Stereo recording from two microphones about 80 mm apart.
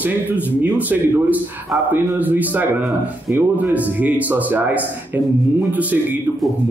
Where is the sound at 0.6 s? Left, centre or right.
Centre.